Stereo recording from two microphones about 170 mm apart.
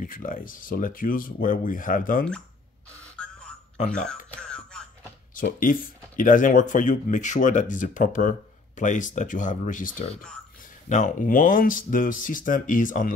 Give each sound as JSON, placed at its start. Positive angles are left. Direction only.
{"t": 0.0, "sound": "speech", "side_deg": 55}
{"t": 3.9, "sound": "speech", "side_deg": 5}
{"t": 4.3, "sound": "music", "side_deg": 5}
{"t": 5.3, "sound": "speech", "side_deg": 55}